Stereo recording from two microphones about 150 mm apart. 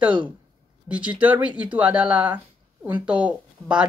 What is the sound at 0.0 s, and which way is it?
Speech, 5° right (ahead or behind).